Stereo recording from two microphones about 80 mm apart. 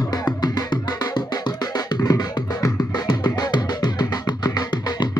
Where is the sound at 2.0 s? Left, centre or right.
Left.